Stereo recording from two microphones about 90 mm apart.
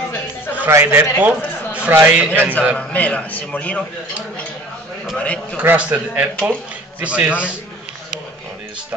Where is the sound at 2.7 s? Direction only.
15° left (ahead or behind).